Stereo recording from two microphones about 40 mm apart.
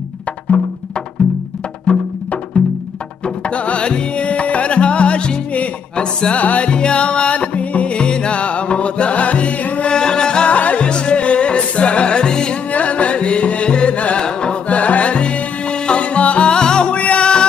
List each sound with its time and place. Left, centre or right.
3.4 s music: left
6.7 s music: left
9.8 s music: left
10.5 s music: left
12.7 s music: left
16.9 s music: left